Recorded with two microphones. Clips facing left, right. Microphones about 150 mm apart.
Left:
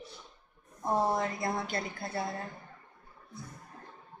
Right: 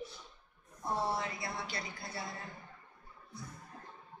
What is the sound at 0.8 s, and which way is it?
A woman's voice, 45° left (ahead or behind).